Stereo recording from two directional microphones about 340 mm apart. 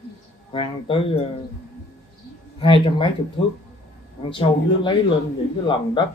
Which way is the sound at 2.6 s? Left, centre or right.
Centre.